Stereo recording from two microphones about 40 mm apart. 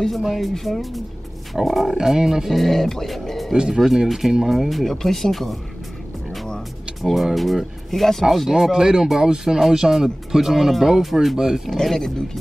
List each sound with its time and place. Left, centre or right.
0.4 s speech: centre
2.0 s speech: centre
2.5 s speech: centre
3.5 s speech: right
3.8 s speech: centre
7.0 s speech: centre
11.7 s speech: centre